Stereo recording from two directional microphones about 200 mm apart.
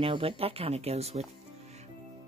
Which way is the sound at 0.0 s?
25° right (ahead or behind).